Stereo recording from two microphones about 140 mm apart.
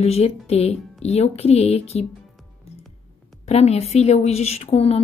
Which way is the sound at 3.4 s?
50° left (ahead or behind).